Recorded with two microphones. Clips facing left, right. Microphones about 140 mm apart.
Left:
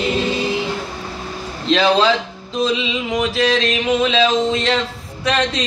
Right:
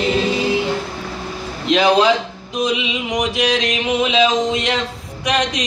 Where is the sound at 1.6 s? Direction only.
15° right (ahead or behind).